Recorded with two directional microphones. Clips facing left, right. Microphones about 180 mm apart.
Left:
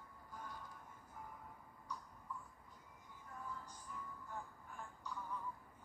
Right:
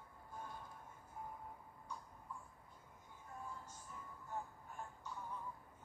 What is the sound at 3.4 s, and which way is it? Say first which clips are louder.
Music: left 1 dB; 25° right (ahead or behind).